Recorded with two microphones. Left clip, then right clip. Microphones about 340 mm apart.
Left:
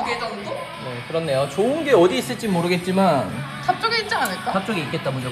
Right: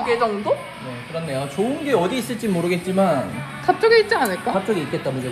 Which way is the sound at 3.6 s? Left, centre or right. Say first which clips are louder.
Right 6 dB; centre.